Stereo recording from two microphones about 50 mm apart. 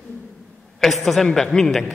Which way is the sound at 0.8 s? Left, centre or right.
Centre.